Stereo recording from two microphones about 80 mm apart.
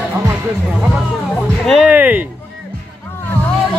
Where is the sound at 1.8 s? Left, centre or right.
Right.